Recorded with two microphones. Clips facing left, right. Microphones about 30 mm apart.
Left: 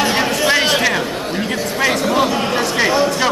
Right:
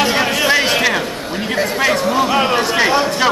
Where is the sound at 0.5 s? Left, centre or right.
Centre.